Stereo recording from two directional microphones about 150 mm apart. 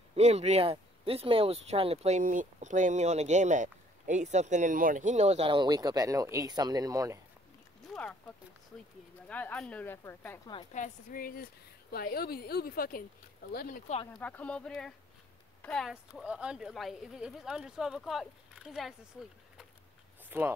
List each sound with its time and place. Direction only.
0.1 s speech: 45° right (ahead or behind)
5.5 s speech: 30° right (ahead or behind)
7.9 s a sound: 5° left (ahead or behind)
9.3 s speech: 10° left (ahead or behind)
10.7 s a woman's voice: 60° left (ahead or behind)
11.9 s a woman's voice: 90° left
14.1 s speech: 10° left (ahead or behind)
15.9 s speech: 5° right (ahead or behind)
20.2 s speech: 15° right (ahead or behind)